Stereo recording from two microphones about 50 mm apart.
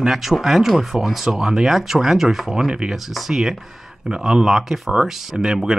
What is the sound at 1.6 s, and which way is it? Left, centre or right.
Speech, centre.